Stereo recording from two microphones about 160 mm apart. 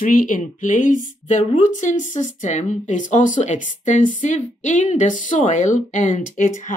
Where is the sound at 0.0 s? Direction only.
60° left (ahead or behind).